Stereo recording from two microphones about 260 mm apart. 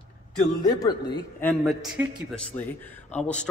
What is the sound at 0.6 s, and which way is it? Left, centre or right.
A man's voice, centre.